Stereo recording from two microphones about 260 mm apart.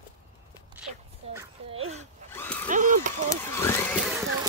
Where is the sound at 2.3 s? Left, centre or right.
Centre.